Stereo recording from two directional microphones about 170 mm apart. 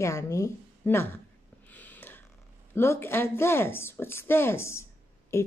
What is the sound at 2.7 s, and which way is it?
A woman's voice, 15° left (ahead or behind).